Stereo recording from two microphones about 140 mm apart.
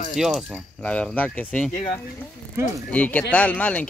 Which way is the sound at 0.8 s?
10° left (ahead or behind).